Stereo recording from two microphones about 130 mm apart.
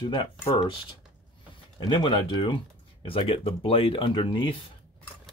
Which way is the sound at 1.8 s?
40° left (ahead or behind).